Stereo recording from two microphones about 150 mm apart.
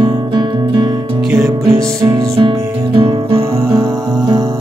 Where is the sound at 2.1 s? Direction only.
20° right (ahead or behind).